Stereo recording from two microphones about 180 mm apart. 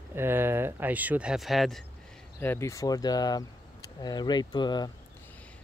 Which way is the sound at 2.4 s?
15° left (ahead or behind).